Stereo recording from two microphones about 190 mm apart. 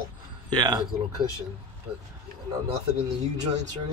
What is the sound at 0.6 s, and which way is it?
Speech, 20° right (ahead or behind).